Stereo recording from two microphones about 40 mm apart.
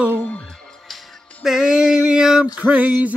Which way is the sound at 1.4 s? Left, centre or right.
Centre.